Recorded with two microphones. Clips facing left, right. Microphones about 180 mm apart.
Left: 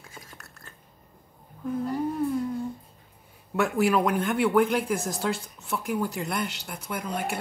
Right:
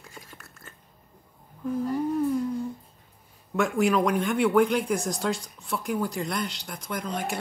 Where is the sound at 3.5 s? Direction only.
Centre (ahead or behind).